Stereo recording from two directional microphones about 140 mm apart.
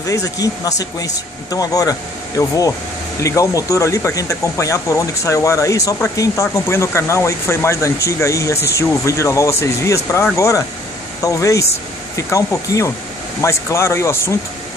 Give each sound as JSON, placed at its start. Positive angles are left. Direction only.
{"t": 0.0, "sound": "speech", "side_deg": 25}